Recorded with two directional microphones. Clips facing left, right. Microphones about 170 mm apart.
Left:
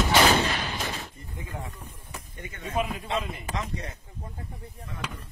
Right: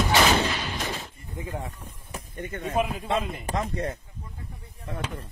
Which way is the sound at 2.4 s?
50° right (ahead or behind).